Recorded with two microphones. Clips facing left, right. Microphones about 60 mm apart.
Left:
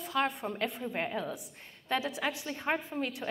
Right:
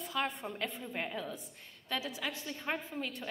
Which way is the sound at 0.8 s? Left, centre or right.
Left.